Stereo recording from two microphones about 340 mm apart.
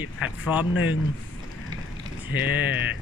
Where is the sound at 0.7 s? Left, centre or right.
Left.